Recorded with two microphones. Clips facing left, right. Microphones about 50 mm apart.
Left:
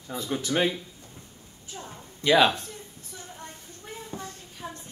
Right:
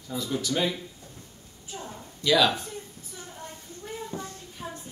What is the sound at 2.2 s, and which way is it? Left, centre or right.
Speech, left.